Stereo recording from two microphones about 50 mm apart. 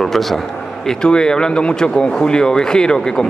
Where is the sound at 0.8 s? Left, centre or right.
Centre.